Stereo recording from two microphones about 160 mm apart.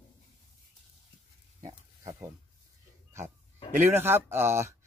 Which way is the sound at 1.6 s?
20° right (ahead or behind).